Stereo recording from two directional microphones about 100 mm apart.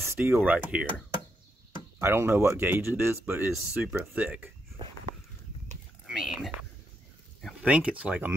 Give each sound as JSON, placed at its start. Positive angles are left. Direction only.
{"t": 0.1, "sound": "a sound", "side_deg": -25}
{"t": 0.4, "sound": "speech", "side_deg": -10}
{"t": 2.0, "sound": "speech", "side_deg": -25}
{"t": 6.0, "sound": "whispering", "side_deg": 0}
{"t": 7.6, "sound": "speech", "side_deg": -10}